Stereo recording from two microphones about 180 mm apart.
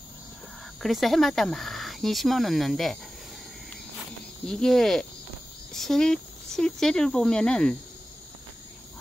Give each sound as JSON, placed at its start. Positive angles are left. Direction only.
{"t": 0.8, "sound": "speech", "side_deg": 0}
{"t": 4.5, "sound": "speech", "side_deg": 5}